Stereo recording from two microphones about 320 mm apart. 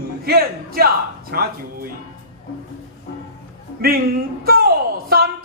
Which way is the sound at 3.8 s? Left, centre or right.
Right.